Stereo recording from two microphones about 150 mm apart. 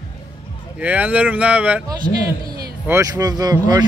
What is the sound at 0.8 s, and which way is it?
Speech, 10° right (ahead or behind).